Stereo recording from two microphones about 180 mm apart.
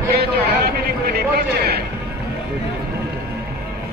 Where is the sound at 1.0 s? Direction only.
60° right (ahead or behind).